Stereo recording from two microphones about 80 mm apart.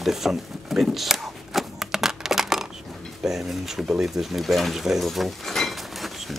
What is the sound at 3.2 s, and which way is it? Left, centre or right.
Speech, centre.